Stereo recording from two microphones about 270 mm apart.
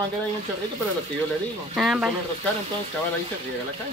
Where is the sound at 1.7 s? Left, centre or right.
Centre.